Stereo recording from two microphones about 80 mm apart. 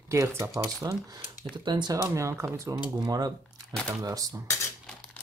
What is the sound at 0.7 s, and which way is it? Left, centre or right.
Speech, right.